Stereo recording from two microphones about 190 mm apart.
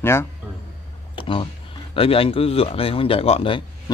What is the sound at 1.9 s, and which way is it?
Speech, 30° left (ahead or behind).